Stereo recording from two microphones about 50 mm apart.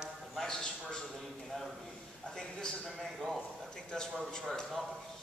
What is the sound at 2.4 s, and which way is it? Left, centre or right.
Speech, centre.